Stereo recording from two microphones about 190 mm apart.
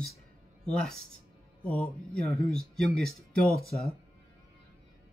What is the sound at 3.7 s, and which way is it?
Speech, 30° left (ahead or behind).